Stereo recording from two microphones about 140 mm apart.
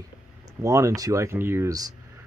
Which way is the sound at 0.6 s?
25° right (ahead or behind).